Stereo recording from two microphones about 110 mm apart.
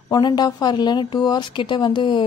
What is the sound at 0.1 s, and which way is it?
A woman's voice, 40° left (ahead or behind).